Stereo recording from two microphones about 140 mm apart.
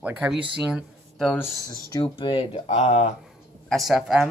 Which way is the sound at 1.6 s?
35° left (ahead or behind).